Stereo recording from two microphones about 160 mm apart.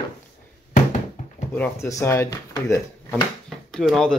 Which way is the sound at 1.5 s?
15° left (ahead or behind).